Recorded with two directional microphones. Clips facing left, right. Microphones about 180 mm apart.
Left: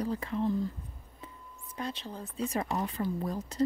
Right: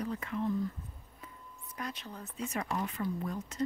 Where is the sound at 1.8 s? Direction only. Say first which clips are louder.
Left 4 dB; 30° left (ahead or behind).